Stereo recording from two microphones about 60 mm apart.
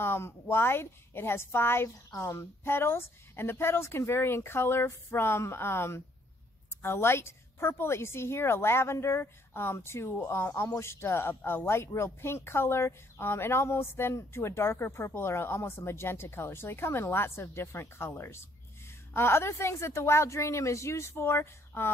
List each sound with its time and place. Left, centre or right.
0.0 s a woman's voice: left